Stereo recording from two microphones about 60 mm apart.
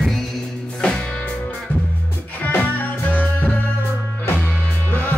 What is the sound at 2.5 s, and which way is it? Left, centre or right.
Music, left.